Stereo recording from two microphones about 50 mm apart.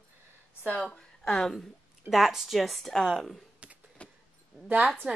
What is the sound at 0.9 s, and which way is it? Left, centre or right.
Speech, centre.